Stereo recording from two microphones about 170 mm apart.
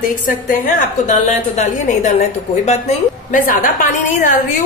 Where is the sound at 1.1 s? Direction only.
45° left (ahead or behind).